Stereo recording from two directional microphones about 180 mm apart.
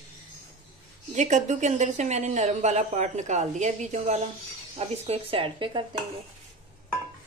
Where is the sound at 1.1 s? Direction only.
40° right (ahead or behind).